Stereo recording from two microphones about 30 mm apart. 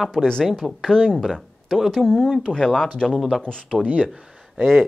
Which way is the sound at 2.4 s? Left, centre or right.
Left.